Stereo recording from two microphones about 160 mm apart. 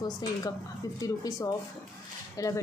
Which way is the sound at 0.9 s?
20° left (ahead or behind).